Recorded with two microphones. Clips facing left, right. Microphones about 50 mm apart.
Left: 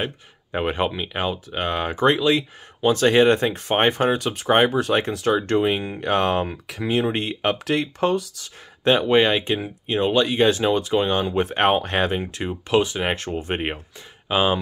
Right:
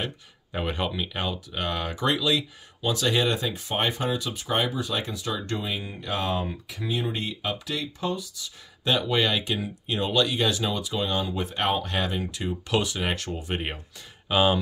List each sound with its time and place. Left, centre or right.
0.5 s speech: left
8.8 s speech: left
14.3 s speech: centre